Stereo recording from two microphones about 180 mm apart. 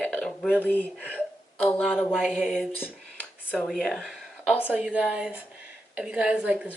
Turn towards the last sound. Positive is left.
turn(degrees=-5)  # may be behind; listen again after turning